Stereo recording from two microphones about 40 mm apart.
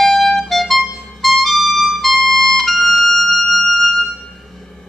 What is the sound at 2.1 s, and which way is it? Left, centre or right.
Music, centre.